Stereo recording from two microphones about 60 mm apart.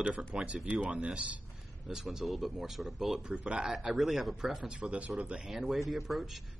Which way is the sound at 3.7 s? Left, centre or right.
Centre.